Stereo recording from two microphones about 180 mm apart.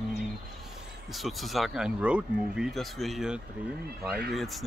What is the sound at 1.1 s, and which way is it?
Speech, centre (ahead or behind).